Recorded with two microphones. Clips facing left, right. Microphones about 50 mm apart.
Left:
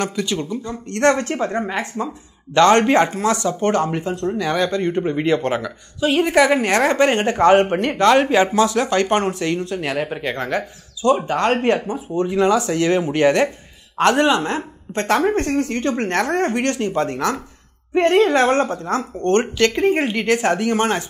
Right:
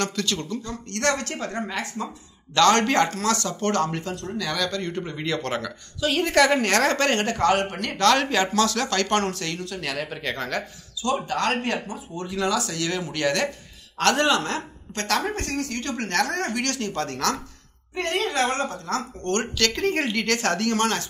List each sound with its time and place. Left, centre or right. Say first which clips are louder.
0.0 s speech: left 4 dB; centre
17.9 s speech: left 10 dB; left